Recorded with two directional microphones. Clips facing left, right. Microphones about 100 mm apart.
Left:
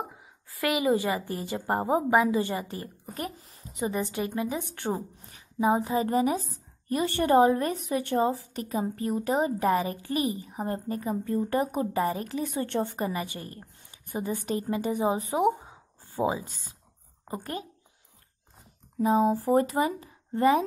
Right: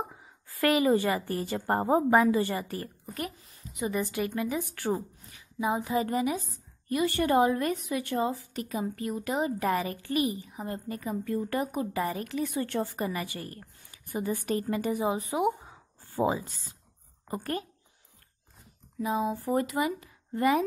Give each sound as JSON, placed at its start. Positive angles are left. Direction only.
{"t": 0.0, "sound": "a woman's voice", "side_deg": 5}
{"t": 3.1, "sound": "a woman's voice", "side_deg": 35}
{"t": 15.6, "sound": "a sound", "side_deg": 20}
{"t": 17.2, "sound": "a woman's voice", "side_deg": 20}
{"t": 18.9, "sound": "a woman's voice", "side_deg": 40}